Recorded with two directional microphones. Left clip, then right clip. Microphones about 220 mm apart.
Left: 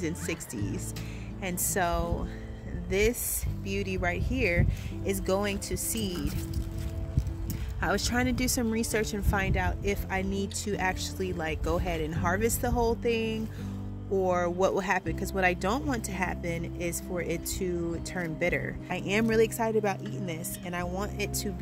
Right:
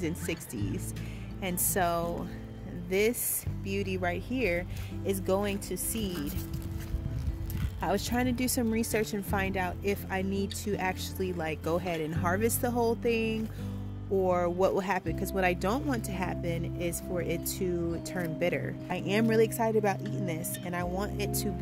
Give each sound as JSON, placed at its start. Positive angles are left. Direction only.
{"t": 0.0, "sound": "speech", "side_deg": -10}
{"t": 7.8, "sound": "speech", "side_deg": 0}